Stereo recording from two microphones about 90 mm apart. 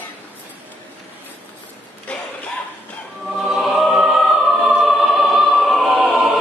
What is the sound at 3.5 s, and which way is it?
Choir, centre (ahead or behind).